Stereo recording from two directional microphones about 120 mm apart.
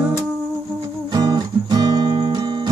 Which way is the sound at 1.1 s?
35° right (ahead or behind).